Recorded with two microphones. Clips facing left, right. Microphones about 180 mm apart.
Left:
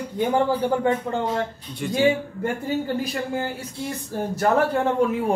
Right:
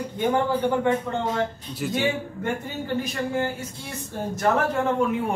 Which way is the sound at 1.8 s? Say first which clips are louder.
Even; 5° right (ahead or behind).